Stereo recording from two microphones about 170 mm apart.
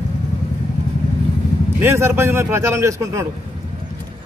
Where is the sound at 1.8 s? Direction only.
15° right (ahead or behind).